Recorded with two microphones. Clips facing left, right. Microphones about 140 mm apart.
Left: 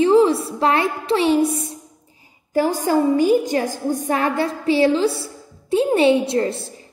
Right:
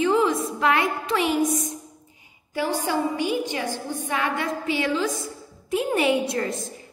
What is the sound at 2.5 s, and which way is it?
Speech, 40° left (ahead or behind).